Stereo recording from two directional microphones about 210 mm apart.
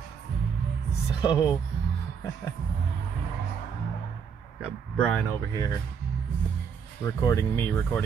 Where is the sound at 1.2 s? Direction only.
20° left (ahead or behind).